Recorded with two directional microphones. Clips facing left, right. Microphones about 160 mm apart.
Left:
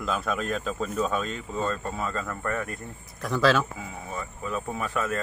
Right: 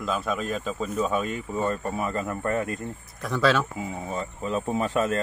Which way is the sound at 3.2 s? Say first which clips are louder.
Even; centre (ahead or behind).